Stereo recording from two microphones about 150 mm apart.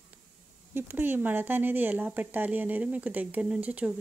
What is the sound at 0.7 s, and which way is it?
Speech, 15° right (ahead or behind).